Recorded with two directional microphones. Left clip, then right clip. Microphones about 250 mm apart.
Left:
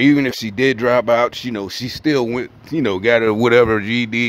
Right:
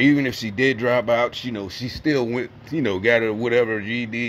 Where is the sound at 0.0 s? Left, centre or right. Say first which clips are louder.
Left 4 dB; centre.